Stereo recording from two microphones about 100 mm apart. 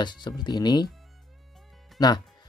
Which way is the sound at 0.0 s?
45° left (ahead or behind).